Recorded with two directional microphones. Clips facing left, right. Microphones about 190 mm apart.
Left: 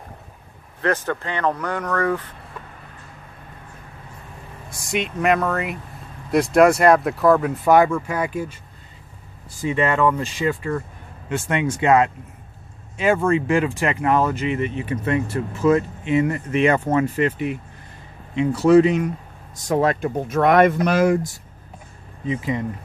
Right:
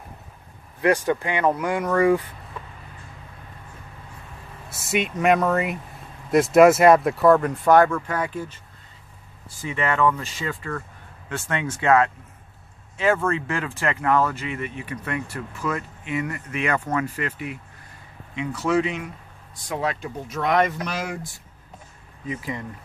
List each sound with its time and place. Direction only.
0.7 s speech: 15° right (ahead or behind)
4.6 s speech: 5° right (ahead or behind)
9.7 s speech: 15° left (ahead or behind); by 21.3 s 50° left (ahead or behind)
22.2 s speech: 25° left (ahead or behind)